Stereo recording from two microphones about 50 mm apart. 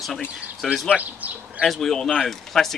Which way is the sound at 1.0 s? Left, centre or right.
Right.